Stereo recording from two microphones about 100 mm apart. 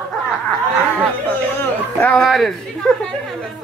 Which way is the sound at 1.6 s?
15° left (ahead or behind).